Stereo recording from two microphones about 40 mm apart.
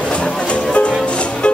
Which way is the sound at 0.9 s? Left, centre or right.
Left.